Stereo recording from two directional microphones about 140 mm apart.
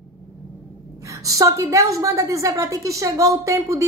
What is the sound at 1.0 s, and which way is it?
A woman's voice, 25° right (ahead or behind).